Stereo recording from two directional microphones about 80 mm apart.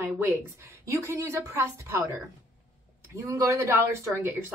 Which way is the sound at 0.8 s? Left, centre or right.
Right.